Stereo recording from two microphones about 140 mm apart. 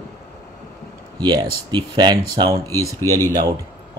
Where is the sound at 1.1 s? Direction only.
30° right (ahead or behind).